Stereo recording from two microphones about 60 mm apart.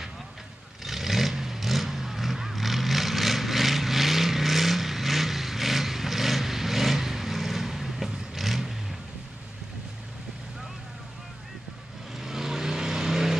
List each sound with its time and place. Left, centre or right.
0.8 s vehicle: centre
12.2 s vehicle: centre